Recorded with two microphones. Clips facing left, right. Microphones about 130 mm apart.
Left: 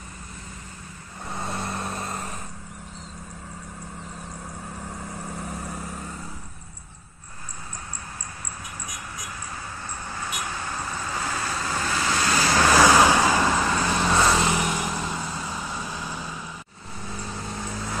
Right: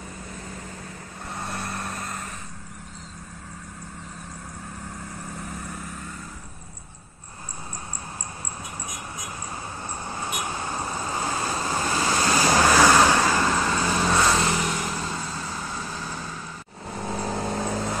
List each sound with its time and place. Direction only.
1.3 s vehicle: 20° left (ahead or behind)
9.8 s vehicle: 25° right (ahead or behind)
12.7 s vehicle: 10° left (ahead or behind)
13.8 s vehicle: 10° right (ahead or behind)
14.1 s vehicle: 5° left (ahead or behind)
14.5 s vehicle: 15° left (ahead or behind)
17.0 s vehicle: 60° right (ahead or behind)